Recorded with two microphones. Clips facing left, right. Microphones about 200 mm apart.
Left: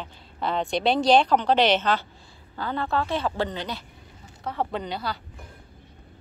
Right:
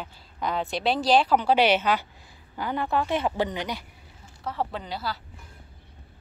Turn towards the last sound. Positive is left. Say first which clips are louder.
# left 3 dB
turn(degrees=-5)  # may be behind; listen again after turning